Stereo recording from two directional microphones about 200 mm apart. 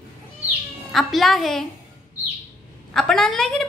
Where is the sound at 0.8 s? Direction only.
Centre (ahead or behind).